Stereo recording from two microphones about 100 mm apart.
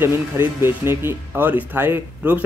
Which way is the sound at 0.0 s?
20° right (ahead or behind).